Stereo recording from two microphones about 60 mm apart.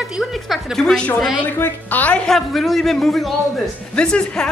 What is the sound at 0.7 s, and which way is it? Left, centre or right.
Speech, centre.